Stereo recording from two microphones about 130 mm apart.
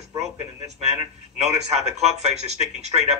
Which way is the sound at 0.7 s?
55° right (ahead or behind).